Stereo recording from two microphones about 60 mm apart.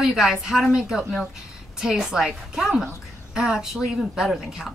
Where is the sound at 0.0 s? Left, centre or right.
Centre.